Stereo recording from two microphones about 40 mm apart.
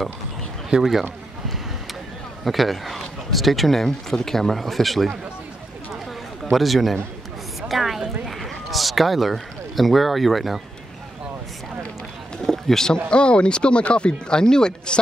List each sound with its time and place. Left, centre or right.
2.4 s speech: centre
6.5 s speech: centre
7.6 s a sound: centre
8.3 s speech: centre
12.4 s speech: centre
13.1 s speech: left